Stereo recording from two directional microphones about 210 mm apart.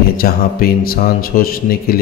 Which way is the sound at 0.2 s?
45° left (ahead or behind).